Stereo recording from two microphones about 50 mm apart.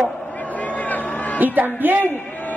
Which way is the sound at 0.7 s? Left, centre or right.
Left.